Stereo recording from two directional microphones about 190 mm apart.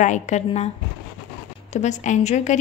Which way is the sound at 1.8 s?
40° left (ahead or behind).